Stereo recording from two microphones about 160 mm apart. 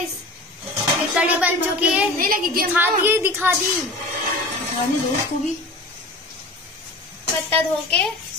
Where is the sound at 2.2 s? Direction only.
65° right (ahead or behind).